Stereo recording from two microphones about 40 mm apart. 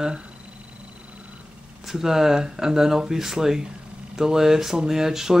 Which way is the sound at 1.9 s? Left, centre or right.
Centre.